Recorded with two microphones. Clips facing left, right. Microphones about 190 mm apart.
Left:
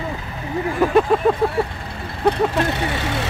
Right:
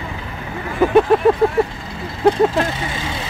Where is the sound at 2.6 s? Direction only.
65° left (ahead or behind).